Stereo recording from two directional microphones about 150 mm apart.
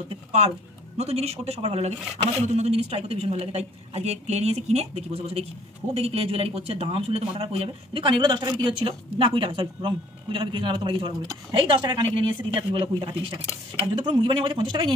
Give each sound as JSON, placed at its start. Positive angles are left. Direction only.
{"t": 0.1, "sound": "a woman's voice", "side_deg": -45}